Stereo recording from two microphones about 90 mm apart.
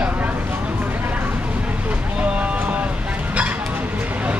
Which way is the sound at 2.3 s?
15° right (ahead or behind).